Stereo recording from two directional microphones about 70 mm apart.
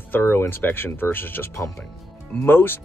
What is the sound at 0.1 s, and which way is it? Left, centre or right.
Speech, left.